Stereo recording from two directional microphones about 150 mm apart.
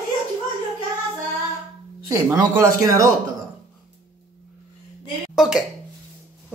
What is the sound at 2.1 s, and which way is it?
A man's voice, 20° right (ahead or behind).